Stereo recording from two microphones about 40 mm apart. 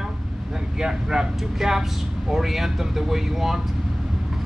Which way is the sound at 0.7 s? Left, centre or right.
Centre.